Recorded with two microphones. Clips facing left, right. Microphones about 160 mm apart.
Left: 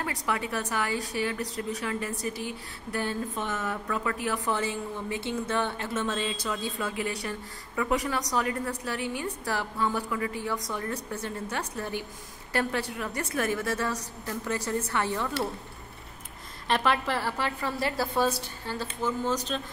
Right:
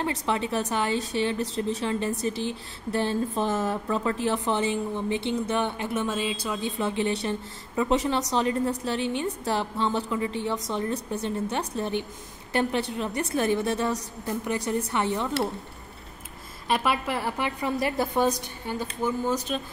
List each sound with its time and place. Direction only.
0.0 s a woman's voice: 25° right (ahead or behind)
16.6 s speech: 10° right (ahead or behind)